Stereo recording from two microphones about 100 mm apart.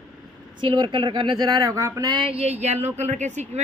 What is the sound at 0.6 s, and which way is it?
Speech, 55° right (ahead or behind).